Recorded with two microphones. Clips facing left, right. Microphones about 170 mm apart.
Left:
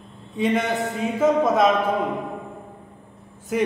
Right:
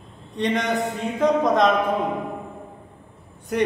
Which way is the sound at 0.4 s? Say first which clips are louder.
Left 1 dB; 5° left (ahead or behind).